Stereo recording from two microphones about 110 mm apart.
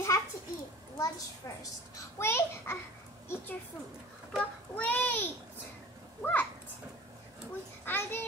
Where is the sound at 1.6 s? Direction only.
25° left (ahead or behind).